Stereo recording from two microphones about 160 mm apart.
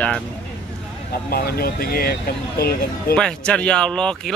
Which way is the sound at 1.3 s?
70° left (ahead or behind).